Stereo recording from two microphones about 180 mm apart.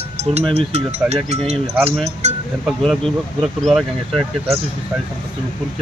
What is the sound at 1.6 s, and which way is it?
Speech, 10° right (ahead or behind).